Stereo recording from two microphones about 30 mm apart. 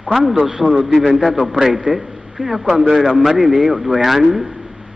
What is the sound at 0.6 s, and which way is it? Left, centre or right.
Speech, centre.